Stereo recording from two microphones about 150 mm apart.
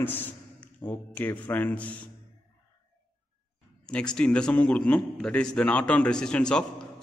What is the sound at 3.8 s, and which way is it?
A man's voice, 5° left (ahead or behind).